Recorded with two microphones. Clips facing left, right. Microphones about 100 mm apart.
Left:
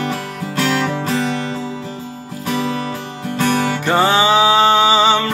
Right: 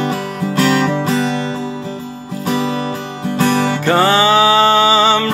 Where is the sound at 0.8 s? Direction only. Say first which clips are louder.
Right 4 dB; 30° right (ahead or behind).